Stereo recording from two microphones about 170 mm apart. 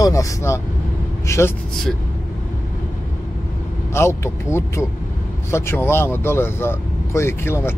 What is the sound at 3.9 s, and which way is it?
Speech, 15° left (ahead or behind).